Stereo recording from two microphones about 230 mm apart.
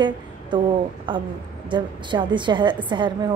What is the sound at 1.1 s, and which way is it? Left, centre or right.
A woman's voice, right.